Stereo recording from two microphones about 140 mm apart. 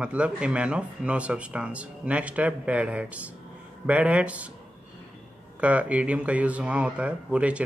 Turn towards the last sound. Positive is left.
turn(degrees=-10)  # may be behind; listen again after turning